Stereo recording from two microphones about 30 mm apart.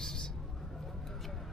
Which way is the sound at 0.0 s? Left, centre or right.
Left.